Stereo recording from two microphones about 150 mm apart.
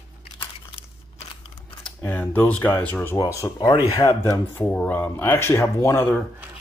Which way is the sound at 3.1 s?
25° left (ahead or behind).